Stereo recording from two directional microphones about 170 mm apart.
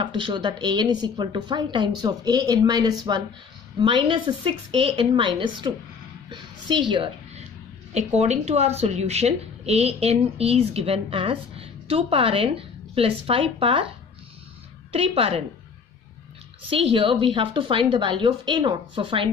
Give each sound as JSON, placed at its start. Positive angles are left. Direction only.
{"t": 0.0, "sound": "a woman's voice", "side_deg": -30}
{"t": 6.2, "sound": "a sound", "side_deg": -30}
{"t": 7.9, "sound": "speech", "side_deg": -40}
{"t": 14.9, "sound": "speech", "side_deg": -35}
{"t": 16.7, "sound": "a woman's voice", "side_deg": -35}